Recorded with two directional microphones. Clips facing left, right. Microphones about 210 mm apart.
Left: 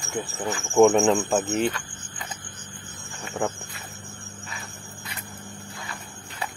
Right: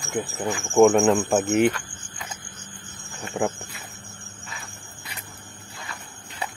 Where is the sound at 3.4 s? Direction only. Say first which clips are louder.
Right 2 dB; 10° right (ahead or behind).